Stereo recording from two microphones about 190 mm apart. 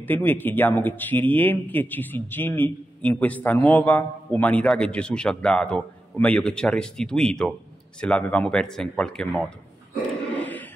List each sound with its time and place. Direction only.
0.0 s speech: 10° left (ahead or behind)
10.3 s music: 10° left (ahead or behind)